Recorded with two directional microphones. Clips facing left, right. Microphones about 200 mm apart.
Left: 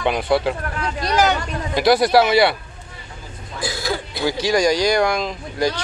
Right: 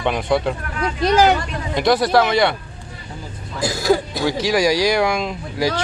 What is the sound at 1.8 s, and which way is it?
Speech, 10° left (ahead or behind).